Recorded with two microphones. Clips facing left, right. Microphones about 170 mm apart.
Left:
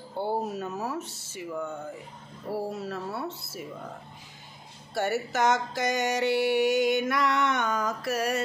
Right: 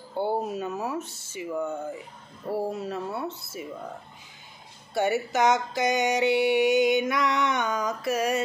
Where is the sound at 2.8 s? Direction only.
15° right (ahead or behind).